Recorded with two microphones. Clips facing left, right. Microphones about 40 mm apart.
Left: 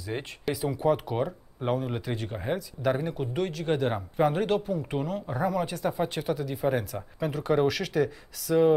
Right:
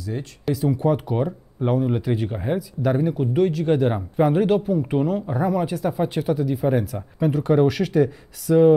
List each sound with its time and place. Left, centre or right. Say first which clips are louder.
0.0 s speech: right 4 dB; left
0.5 s speech: right 5 dB; centre